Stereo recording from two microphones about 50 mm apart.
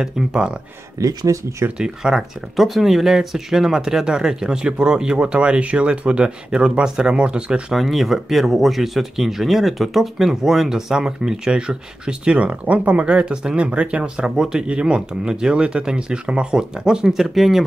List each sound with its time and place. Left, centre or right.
0.0 s speech: centre
0.9 s speech: right
1.8 s speech: centre
2.5 s speech: centre; by 7.6 s right
7.7 s speech: centre
17.2 s speech: centre